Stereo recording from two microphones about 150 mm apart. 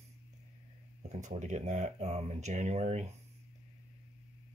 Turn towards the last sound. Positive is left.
turn(degrees=-50)  # may be behind; listen again after turning